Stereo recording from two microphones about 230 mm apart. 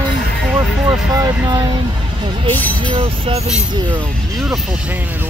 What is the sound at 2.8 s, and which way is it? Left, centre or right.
Speech, right.